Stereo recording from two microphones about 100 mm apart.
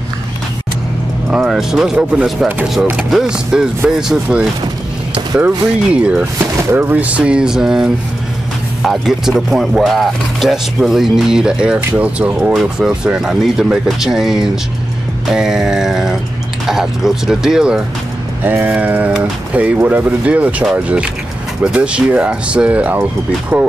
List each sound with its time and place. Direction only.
1.3 s speech: 5° right (ahead or behind)
5.9 s speech: 10° right (ahead or behind)
6.3 s speech: 20° right (ahead or behind)
18.4 s speech: 20° right (ahead or behind)